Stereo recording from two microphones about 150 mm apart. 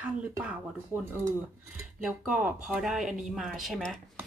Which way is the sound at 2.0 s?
5° right (ahead or behind).